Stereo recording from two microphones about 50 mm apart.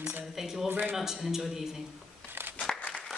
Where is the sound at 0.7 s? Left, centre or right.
Right.